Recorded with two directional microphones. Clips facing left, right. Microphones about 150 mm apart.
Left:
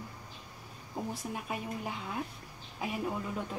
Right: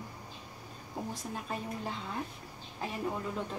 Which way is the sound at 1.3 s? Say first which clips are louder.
Even; 10° left (ahead or behind).